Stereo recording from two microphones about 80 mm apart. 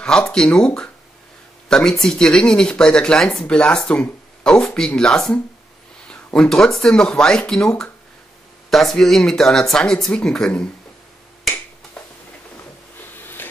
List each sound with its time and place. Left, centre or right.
0.0 s speech: centre
12.0 s a sound: centre
13.4 s printer: left